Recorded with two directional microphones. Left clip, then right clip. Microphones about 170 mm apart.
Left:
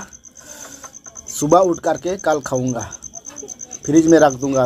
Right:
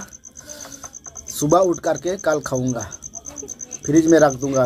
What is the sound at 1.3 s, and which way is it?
Speech, 20° left (ahead or behind).